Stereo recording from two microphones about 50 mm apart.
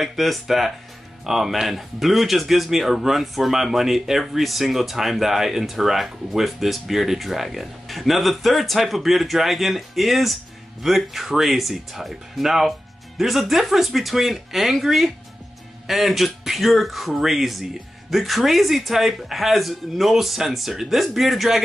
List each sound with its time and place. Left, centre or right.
0.0 s speech: centre